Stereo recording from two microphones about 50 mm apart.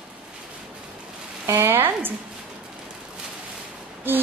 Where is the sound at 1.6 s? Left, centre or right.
Right.